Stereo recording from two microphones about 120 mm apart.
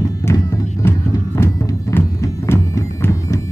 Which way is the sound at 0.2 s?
25° left (ahead or behind).